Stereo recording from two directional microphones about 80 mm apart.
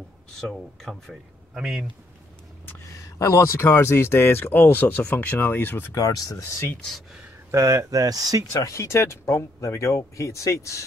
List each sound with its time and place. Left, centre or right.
0.4 s speech: centre
1.5 s speech: centre
3.2 s speech: left
5.9 s speech: left
7.5 s speech: right
8.5 s speech: left